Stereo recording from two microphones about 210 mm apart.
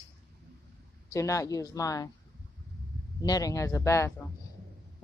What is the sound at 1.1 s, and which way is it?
Speech, 15° left (ahead or behind).